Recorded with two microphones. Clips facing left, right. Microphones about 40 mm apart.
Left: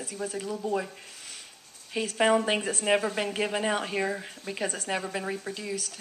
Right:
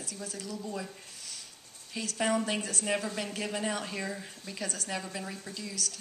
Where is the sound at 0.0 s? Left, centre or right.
Left.